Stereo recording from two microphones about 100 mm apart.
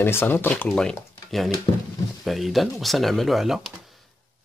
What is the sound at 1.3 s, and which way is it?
Speech, centre (ahead or behind).